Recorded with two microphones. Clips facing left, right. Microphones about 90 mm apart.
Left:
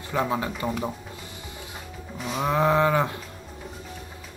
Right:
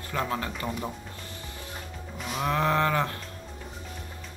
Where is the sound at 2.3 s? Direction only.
15° left (ahead or behind).